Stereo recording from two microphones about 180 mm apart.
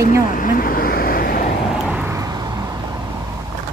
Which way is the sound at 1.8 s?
10° right (ahead or behind).